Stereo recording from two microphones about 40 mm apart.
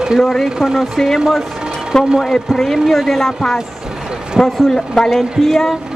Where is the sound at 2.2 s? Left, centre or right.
Centre.